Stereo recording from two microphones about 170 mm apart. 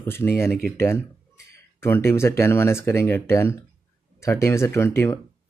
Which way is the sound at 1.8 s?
15° left (ahead or behind).